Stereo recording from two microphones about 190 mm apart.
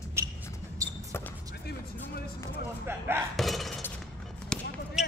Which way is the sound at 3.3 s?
Centre (ahead or behind).